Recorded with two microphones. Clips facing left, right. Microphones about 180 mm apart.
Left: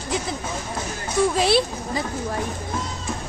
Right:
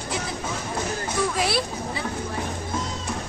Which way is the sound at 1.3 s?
25° left (ahead or behind).